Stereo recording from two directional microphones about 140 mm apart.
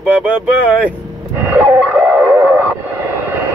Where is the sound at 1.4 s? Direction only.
15° right (ahead or behind).